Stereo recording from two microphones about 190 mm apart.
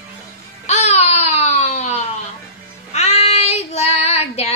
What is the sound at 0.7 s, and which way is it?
Babbling, 35° left (ahead or behind).